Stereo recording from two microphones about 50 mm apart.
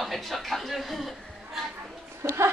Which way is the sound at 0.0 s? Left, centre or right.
Centre.